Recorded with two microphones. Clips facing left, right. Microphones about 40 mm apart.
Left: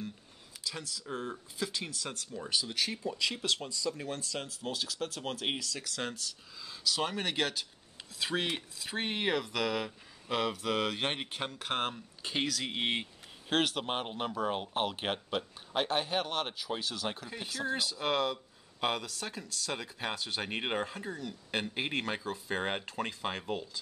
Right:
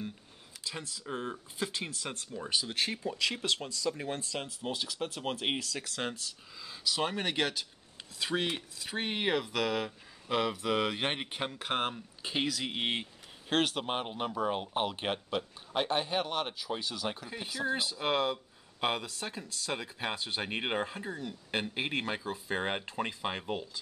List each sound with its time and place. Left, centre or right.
0.7 s speech: right
2.3 s speech: centre
2.7 s speech: right
3.1 s speech: centre
6.6 s speech: centre